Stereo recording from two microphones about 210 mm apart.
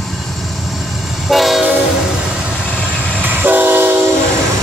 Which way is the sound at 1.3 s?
Centre (ahead or behind).